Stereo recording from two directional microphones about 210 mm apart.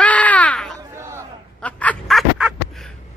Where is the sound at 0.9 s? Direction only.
10° right (ahead or behind).